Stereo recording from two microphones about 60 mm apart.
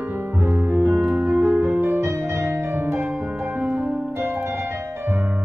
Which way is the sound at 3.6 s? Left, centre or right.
Right.